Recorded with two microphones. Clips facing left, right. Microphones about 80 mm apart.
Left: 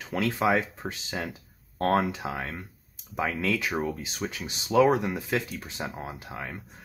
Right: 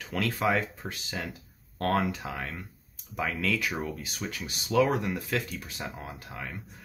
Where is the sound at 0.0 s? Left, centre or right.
Left.